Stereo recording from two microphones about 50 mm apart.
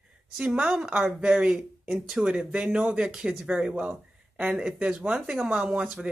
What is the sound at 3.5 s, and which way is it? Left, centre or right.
Speech, right.